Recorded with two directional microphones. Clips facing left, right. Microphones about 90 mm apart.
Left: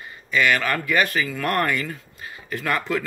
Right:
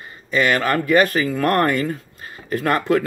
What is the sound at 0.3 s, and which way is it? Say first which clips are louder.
Speech: right 3 dB; 40° right (ahead or behind).